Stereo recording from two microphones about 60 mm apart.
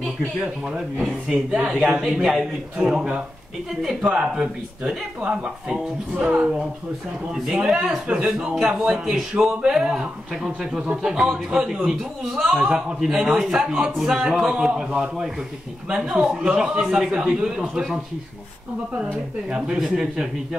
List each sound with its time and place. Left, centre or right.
1.0 s a woman's voice: centre
7.6 s a man's voice: centre
19.5 s speech: centre